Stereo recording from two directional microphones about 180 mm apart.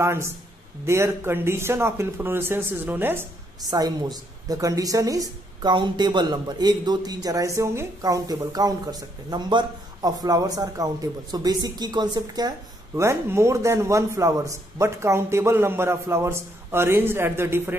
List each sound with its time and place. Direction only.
0.0 s a woman's voice: 15° right (ahead or behind)